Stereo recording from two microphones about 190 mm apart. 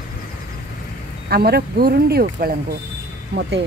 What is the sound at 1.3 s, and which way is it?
Speech, 55° right (ahead or behind).